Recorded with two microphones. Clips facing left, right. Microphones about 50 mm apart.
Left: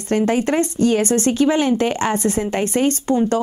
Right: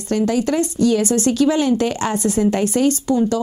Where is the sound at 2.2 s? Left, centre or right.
Left.